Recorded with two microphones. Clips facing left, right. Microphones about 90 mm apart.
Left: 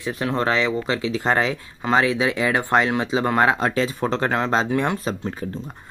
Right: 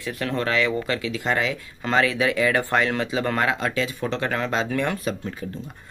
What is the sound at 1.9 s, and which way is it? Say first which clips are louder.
Speech: left 2 dB; 20° left (ahead or behind).